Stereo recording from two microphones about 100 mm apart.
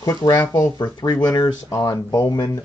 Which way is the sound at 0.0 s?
35° left (ahead or behind).